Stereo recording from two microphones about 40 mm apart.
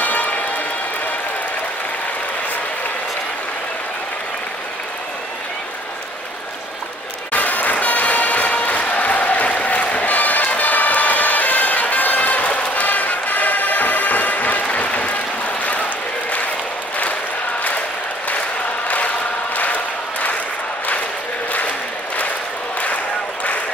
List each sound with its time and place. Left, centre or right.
7.3 s applause: left
18.9 s applause: left